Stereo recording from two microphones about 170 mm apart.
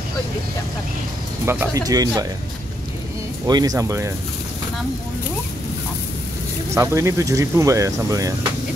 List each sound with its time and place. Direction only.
1.4 s speech: 15° right (ahead or behind)
3.4 s speech: 20° right (ahead or behind)
6.7 s speech: 15° right (ahead or behind)